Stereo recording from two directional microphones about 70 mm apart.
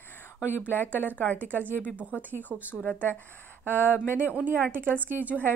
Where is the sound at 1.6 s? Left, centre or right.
Right.